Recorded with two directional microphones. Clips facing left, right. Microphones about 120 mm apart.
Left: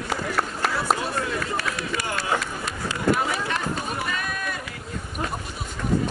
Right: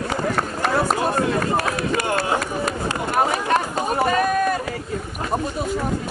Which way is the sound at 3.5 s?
45° right (ahead or behind).